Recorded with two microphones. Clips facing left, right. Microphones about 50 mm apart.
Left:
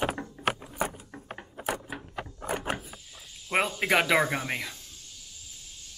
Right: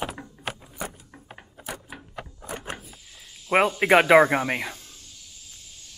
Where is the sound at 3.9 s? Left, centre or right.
Right.